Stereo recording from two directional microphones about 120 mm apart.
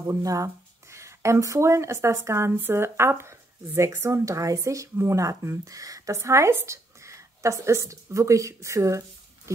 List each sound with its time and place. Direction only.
0.1 s speech: 30° right (ahead or behind)